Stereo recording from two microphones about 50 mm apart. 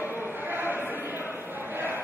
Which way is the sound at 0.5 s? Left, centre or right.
Right.